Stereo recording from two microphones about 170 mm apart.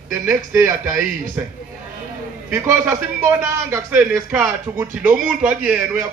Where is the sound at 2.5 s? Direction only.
15° right (ahead or behind).